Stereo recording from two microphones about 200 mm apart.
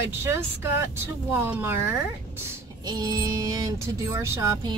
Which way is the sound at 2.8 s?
20° right (ahead or behind).